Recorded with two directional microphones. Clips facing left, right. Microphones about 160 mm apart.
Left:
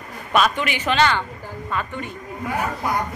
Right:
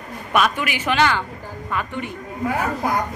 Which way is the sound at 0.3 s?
10° right (ahead or behind).